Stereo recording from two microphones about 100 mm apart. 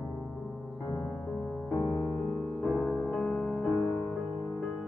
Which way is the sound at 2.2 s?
10° left (ahead or behind).